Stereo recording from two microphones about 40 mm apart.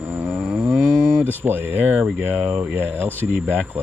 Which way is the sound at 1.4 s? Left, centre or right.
Right.